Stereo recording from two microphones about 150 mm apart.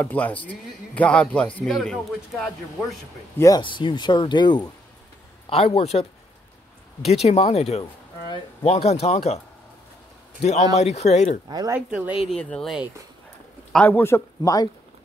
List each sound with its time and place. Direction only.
0.0 s a man's voice: 10° left (ahead or behind)
3.3 s speech: 20° left (ahead or behind)
5.5 s speech: 45° left (ahead or behind)
10.4 s speech: 50° left (ahead or behind)
11.4 s speech: 25° right (ahead or behind)
12.3 s a man's voice: 5° left (ahead or behind); by 14.7 s 25° left (ahead or behind)